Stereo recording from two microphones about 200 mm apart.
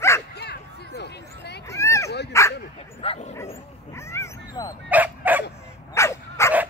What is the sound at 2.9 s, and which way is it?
Speech, 30° left (ahead or behind).